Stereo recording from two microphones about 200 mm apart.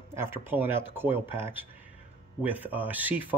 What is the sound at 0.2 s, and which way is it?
A man's voice, 10° right (ahead or behind).